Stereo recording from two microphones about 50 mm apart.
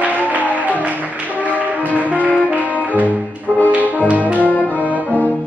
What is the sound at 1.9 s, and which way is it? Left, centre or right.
Music, right.